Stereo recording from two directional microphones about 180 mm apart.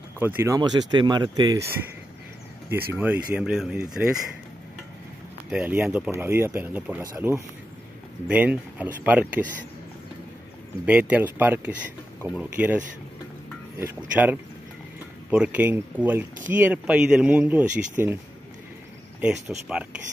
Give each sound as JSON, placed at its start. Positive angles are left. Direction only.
{"t": 0.2, "sound": "speech", "side_deg": -10}
{"t": 0.6, "sound": "speech", "side_deg": -25}
{"t": 2.9, "sound": "speech", "side_deg": -10}
{"t": 5.5, "sound": "speech", "side_deg": -10}
{"t": 10.9, "sound": "speech", "side_deg": -10}
{"t": 19.4, "sound": "speech", "side_deg": -5}